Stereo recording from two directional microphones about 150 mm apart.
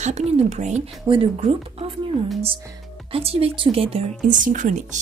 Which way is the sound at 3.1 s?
40° right (ahead or behind).